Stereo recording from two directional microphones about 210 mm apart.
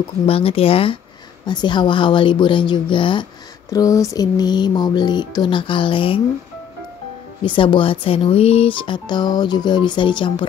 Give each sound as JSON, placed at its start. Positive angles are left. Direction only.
{"t": 0.3, "sound": "speech", "side_deg": 25}
{"t": 7.4, "sound": "speech", "side_deg": 25}